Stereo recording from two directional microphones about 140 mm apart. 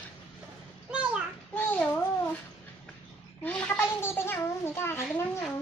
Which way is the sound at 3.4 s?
10° left (ahead or behind).